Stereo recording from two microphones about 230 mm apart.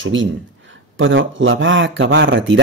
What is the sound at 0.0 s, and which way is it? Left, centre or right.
Speech, right.